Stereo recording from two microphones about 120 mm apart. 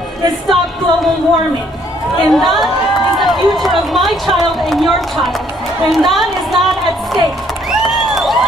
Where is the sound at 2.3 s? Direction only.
Centre (ahead or behind).